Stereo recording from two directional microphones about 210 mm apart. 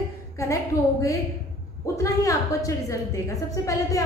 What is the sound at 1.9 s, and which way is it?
A woman's voice, 15° left (ahead or behind).